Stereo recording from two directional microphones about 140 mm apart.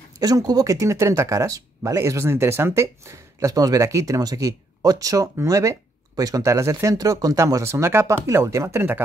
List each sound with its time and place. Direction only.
0.2 s speech: 25° right (ahead or behind)